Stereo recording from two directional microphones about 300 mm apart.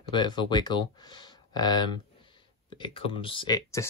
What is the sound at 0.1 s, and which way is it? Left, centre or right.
Speech, centre.